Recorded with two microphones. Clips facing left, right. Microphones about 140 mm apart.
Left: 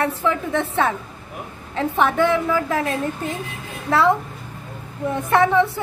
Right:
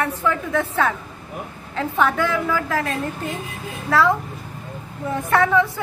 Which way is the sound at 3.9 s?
25° left (ahead or behind).